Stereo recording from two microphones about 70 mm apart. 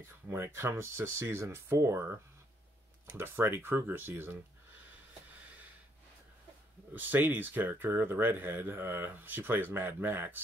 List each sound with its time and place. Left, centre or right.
0.0 s speech: right
6.9 s speech: right